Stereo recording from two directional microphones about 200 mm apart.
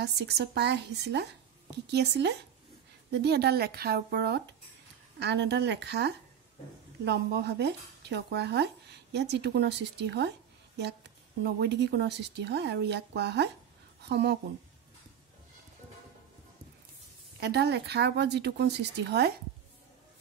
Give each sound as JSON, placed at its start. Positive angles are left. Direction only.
{"t": 0.0, "sound": "speech", "side_deg": -55}
{"t": 11.4, "sound": "speech", "side_deg": -60}
{"t": 17.4, "sound": "speech", "side_deg": -55}